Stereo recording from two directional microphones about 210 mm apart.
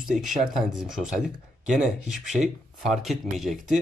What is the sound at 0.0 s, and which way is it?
Speech, centre (ahead or behind).